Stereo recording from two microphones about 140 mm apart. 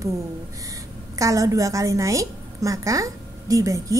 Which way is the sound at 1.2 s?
25° right (ahead or behind).